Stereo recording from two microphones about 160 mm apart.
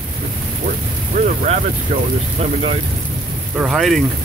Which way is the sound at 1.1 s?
50° right (ahead or behind).